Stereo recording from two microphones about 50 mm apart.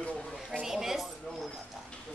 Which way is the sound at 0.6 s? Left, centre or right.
Centre.